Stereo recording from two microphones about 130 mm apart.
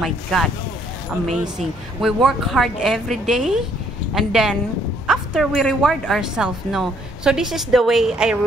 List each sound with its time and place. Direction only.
0.0 s speech: centre (ahead or behind)
2.0 s speech: 5° right (ahead or behind)